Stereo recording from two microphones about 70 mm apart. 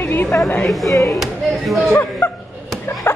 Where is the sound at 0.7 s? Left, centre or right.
Centre.